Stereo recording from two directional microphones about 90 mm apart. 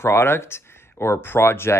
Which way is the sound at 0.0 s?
30° left (ahead or behind).